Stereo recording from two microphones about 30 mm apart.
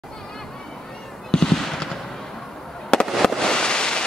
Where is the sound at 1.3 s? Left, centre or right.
Centre.